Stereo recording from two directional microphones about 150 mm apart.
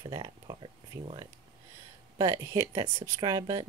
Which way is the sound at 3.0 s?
25° right (ahead or behind).